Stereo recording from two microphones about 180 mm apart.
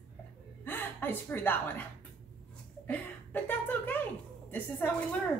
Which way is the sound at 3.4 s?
10° left (ahead or behind).